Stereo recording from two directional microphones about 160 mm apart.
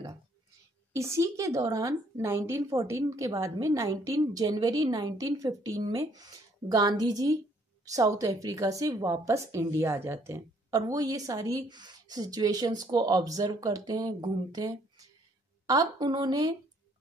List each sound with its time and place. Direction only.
0.9 s a woman's voice: 20° right (ahead or behind)